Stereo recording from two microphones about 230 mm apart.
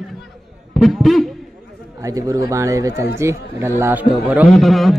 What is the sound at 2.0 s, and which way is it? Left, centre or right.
A man's voice, centre.